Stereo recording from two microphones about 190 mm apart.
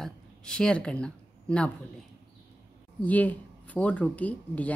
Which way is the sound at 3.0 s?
10° left (ahead or behind).